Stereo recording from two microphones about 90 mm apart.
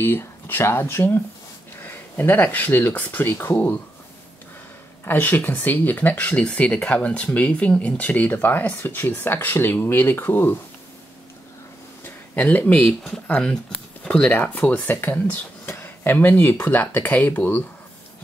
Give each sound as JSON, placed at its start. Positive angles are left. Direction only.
{"t": 0.0, "sound": "speech", "side_deg": 25}
{"t": 3.5, "sound": "speech", "side_deg": 15}
{"t": 5.0, "sound": "speech", "side_deg": 20}
{"t": 12.0, "sound": "a sound", "side_deg": 15}
{"t": 13.3, "sound": "speech", "side_deg": 10}